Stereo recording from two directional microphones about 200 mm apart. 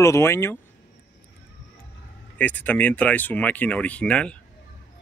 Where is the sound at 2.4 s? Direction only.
10° left (ahead or behind).